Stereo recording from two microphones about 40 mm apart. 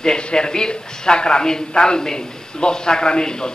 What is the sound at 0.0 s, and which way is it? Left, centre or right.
Speech, centre.